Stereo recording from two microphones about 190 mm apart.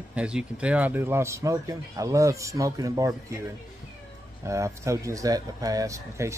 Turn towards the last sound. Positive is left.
turn(degrees=-15)  # may be behind; listen again after turning